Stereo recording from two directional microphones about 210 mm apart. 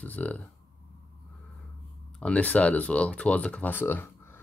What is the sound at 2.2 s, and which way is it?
Speech, 5° left (ahead or behind).